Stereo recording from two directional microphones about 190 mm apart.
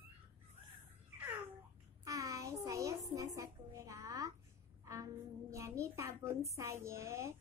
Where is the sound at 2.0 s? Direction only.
15° right (ahead or behind).